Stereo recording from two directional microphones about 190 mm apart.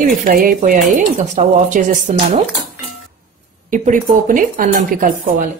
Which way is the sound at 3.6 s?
45° right (ahead or behind).